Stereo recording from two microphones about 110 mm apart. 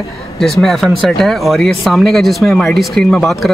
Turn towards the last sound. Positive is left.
turn(degrees=0)  # may be behind; listen again after turning